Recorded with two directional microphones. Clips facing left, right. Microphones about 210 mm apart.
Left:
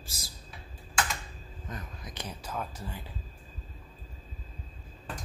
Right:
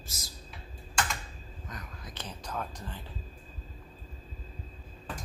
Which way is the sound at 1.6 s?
25° left (ahead or behind).